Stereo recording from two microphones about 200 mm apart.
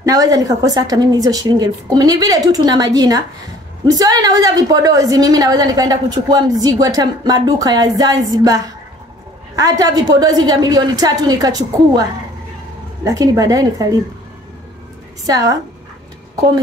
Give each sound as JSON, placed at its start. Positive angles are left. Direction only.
{"t": 0.0, "sound": "a woman's voice", "side_deg": -20}
{"t": 13.0, "sound": "a woman's voice", "side_deg": -20}
{"t": 15.2, "sound": "a woman's voice", "side_deg": -20}